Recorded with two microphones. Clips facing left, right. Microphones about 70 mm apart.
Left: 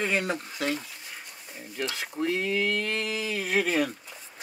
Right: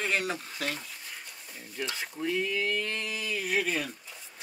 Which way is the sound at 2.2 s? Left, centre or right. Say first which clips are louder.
Left 3 dB; left.